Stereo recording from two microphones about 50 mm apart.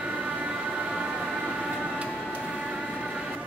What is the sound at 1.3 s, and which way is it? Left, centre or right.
Train, right.